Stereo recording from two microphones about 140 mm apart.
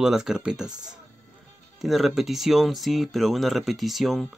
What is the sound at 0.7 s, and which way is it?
Speech, 30° right (ahead or behind).